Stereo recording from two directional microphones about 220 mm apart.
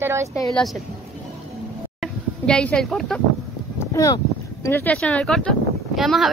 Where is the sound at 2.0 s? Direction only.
5° left (ahead or behind).